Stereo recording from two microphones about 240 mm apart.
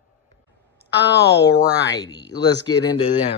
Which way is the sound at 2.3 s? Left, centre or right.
Left.